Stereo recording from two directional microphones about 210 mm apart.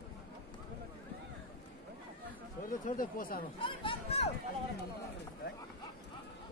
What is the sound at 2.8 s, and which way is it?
Speech, 40° left (ahead or behind).